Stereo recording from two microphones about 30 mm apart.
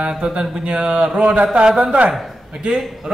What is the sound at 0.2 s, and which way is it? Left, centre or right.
Speech, right.